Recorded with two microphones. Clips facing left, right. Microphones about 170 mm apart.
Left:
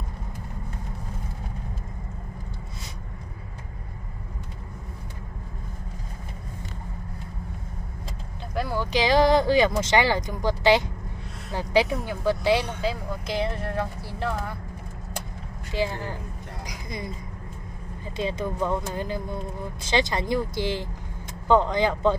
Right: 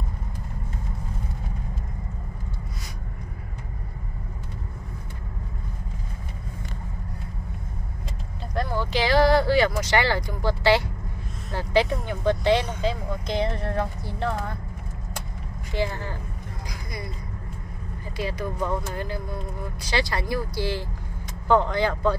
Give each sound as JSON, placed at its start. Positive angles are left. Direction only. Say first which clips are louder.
{"t": 8.5, "sound": "speech", "louder": "even", "side_deg": 10}
{"t": 15.7, "sound": "speech", "louder": "even", "side_deg": 10}
{"t": 16.6, "sound": "a sound", "louder": "left 2 dB", "side_deg": 20}
{"t": 18.1, "sound": "speech", "louder": "left 2 dB", "side_deg": 25}